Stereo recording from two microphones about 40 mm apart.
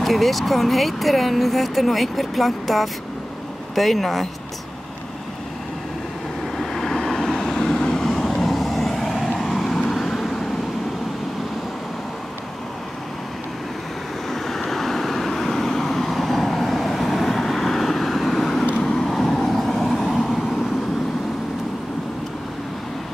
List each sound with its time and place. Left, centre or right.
0.0 s speech: centre
6.6 s vehicle: centre
14.3 s vehicle: centre
18.8 s vehicle: centre